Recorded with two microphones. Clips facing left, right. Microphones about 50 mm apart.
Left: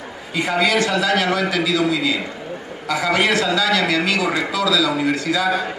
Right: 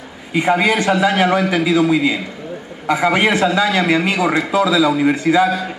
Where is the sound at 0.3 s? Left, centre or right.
Right.